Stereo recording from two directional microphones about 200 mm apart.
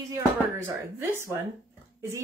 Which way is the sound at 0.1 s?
15° right (ahead or behind).